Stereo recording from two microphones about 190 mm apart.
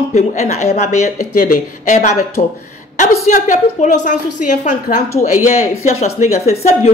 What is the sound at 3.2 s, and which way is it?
Speech, 40° left (ahead or behind).